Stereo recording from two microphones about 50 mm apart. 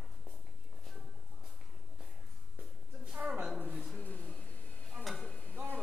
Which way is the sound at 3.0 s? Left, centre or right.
Right.